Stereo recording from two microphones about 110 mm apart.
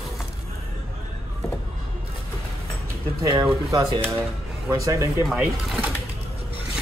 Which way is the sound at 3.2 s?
40° right (ahead or behind).